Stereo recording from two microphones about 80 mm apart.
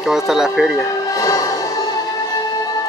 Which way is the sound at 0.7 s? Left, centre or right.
Left.